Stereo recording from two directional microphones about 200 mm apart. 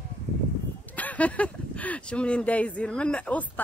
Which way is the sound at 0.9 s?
5° left (ahead or behind).